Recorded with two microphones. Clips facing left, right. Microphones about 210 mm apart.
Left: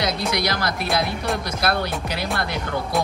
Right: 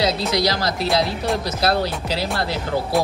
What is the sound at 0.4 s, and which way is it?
Speech, 55° left (ahead or behind).